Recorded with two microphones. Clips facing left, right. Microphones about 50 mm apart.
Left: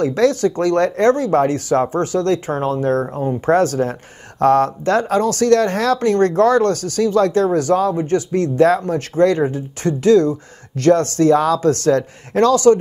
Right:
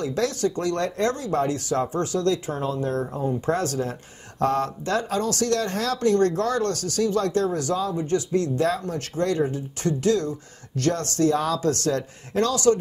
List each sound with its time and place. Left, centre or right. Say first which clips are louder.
0.0 s speech: left 9 dB; left
1.5 s speech: left 8 dB; left